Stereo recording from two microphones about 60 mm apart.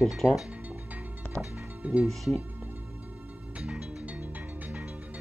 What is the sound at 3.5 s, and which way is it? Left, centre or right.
Music, centre.